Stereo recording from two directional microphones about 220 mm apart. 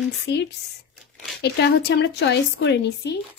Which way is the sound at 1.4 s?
50° left (ahead or behind).